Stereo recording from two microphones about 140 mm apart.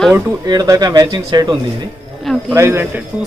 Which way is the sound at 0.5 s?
25° right (ahead or behind).